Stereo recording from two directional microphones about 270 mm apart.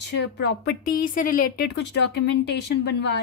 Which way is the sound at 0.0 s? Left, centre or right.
Left.